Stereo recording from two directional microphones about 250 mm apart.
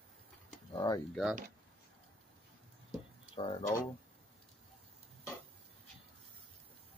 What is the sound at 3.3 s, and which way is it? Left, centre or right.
Speech, left.